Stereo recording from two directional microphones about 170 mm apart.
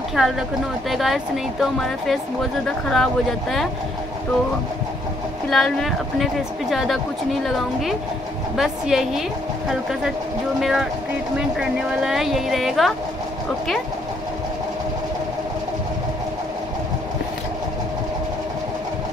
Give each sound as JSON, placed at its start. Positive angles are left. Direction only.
{"t": 0.1, "sound": "speech", "side_deg": 0}
{"t": 5.5, "sound": "speech", "side_deg": 0}
{"t": 8.5, "sound": "speech", "side_deg": 0}